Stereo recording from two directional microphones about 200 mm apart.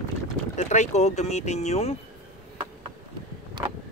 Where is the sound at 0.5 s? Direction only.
35° left (ahead or behind).